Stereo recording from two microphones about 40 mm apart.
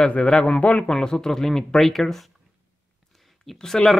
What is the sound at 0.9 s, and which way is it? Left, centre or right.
Speech, centre.